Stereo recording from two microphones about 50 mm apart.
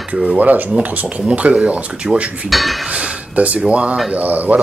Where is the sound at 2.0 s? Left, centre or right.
Centre.